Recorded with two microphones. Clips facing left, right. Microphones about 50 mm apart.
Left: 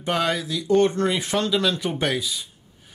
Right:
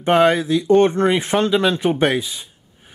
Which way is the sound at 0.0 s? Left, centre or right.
Right.